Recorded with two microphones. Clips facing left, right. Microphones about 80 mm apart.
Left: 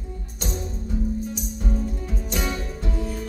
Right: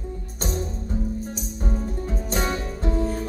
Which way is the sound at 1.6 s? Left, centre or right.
Right.